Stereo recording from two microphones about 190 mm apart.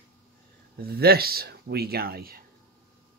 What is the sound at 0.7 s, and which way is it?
Speech, 55° right (ahead or behind).